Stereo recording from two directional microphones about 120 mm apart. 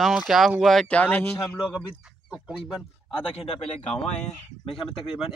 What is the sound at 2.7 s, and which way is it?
Speech, centre (ahead or behind).